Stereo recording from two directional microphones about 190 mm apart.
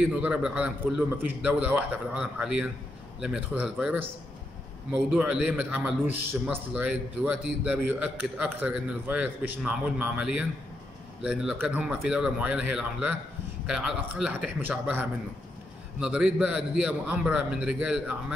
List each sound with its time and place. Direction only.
0.0 s a man's voice: 5° right (ahead or behind)